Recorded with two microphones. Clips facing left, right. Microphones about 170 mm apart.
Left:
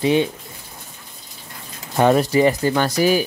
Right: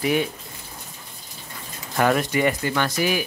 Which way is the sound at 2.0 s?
30° left (ahead or behind).